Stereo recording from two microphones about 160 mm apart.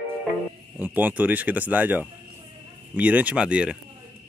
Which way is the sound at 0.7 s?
10° right (ahead or behind).